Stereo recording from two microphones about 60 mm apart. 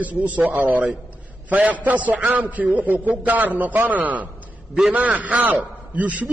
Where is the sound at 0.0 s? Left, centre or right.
Right.